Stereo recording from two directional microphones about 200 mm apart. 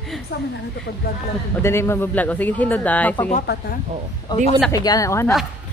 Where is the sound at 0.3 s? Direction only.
55° left (ahead or behind).